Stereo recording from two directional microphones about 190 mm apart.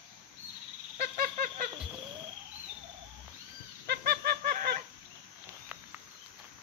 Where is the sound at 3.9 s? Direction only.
55° right (ahead or behind).